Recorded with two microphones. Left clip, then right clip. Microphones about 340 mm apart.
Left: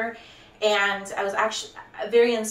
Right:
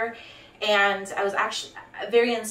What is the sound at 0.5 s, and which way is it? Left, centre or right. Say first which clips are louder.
A woman's voice: right 1 dB; centre.